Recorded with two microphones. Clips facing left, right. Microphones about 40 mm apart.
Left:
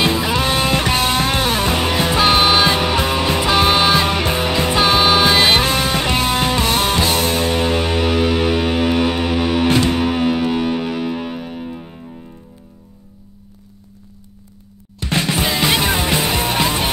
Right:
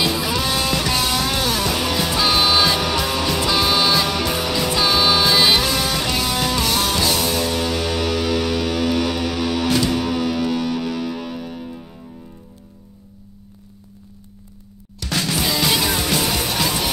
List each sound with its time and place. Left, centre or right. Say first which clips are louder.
0.0 s music: left 4 dB; left
15.0 s music: left 3 dB; left